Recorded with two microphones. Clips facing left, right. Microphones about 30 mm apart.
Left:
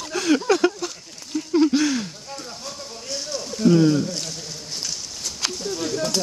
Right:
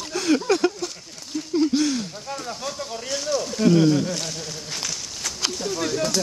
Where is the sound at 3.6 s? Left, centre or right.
Right.